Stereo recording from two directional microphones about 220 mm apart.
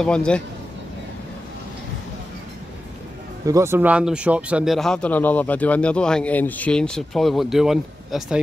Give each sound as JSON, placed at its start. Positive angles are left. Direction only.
{"t": 0.0, "sound": "speech", "side_deg": 5}
{"t": 3.4, "sound": "speech", "side_deg": -15}